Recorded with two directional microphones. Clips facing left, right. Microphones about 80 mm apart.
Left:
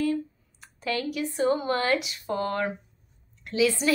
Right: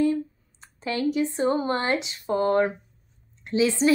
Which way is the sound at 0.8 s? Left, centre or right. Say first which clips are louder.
Right 4 dB; right.